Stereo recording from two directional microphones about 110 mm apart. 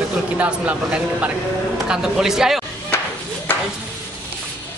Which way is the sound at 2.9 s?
20° left (ahead or behind).